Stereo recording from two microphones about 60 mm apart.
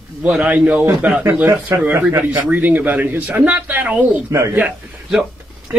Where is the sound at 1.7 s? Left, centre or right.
Right.